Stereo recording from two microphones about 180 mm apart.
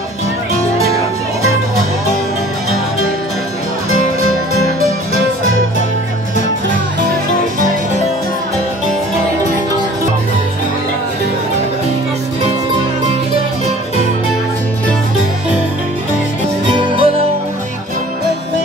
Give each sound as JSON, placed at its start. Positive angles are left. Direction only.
{"t": 5.4, "sound": "music", "side_deg": -90}
{"t": 16.7, "sound": "music", "side_deg": -25}